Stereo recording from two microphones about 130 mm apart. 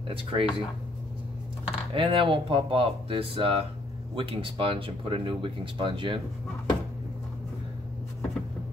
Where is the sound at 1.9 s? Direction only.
40° right (ahead or behind).